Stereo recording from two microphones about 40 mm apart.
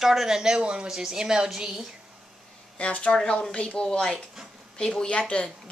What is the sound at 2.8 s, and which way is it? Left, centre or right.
A woman's voice, left.